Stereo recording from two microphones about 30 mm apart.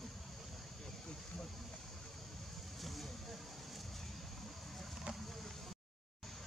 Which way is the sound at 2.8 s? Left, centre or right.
Centre.